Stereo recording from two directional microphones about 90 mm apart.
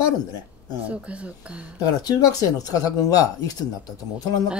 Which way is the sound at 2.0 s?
45° left (ahead or behind).